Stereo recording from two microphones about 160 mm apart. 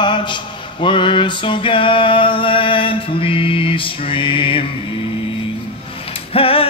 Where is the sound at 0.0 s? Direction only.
30° left (ahead or behind).